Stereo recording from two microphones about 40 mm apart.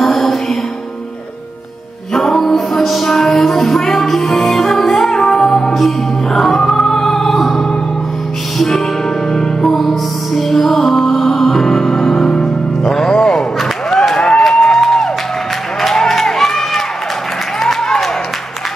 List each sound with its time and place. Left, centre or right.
0.0 s music: centre
2.1 s music: centre
14.1 s a sound: centre